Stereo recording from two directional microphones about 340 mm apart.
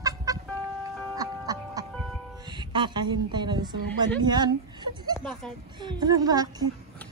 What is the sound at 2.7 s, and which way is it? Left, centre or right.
A woman's voice, centre.